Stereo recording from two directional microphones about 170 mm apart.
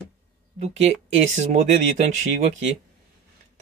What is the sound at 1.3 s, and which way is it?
Speech, 45° right (ahead or behind).